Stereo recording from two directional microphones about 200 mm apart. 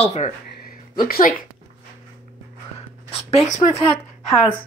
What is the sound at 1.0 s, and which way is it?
Speech, 50° left (ahead or behind).